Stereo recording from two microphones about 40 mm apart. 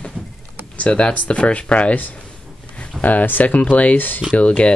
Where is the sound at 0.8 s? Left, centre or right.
Left.